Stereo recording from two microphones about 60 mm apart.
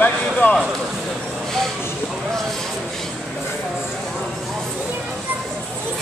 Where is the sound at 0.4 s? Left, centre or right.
Left.